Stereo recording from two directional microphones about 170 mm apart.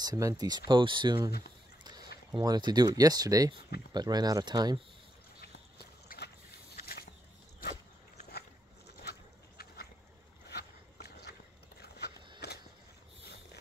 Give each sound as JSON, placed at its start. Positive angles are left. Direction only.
{"t": 0.0, "sound": "speech", "side_deg": -20}
{"t": 2.3, "sound": "speech", "side_deg": -25}
{"t": 5.4, "sound": "a sound", "side_deg": 70}
{"t": 10.5, "sound": "walk", "side_deg": 70}
{"t": 12.4, "sound": "skateboard", "side_deg": 75}